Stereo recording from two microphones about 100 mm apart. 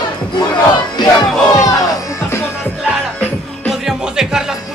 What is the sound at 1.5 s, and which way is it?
Crowd, 35° left (ahead or behind).